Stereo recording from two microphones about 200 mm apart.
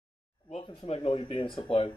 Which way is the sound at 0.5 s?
30° left (ahead or behind).